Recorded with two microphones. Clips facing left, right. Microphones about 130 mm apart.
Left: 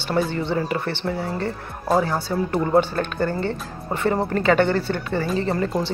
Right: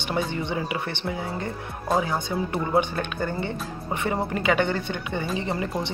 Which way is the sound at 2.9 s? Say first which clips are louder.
Left 4 dB; 15° right (ahead or behind).